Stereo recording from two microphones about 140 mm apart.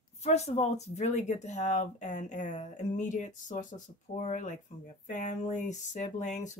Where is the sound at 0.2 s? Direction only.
50° left (ahead or behind).